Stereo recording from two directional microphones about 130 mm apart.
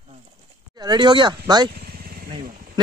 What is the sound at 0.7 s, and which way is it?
Speech, 35° right (ahead or behind).